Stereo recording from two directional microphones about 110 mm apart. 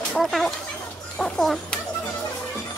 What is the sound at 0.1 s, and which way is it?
Speech, centre (ahead or behind).